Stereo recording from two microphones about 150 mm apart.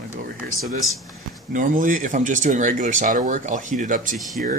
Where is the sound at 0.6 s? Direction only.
Centre (ahead or behind).